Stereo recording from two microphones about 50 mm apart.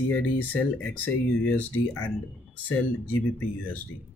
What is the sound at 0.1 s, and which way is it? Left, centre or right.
Speech, left.